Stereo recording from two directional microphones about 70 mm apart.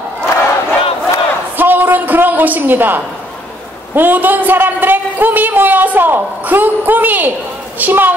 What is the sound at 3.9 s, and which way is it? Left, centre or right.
A man's voice, right.